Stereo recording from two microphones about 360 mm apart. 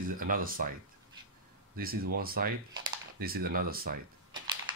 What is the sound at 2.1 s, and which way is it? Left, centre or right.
Speech, right.